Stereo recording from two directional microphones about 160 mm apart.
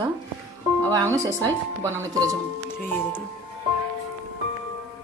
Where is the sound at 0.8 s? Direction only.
20° right (ahead or behind).